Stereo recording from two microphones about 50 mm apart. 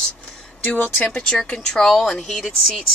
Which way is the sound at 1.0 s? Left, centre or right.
Centre.